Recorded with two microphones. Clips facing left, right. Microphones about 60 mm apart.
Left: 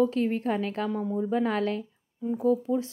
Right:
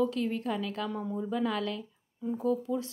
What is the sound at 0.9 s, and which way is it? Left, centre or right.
Speech, centre.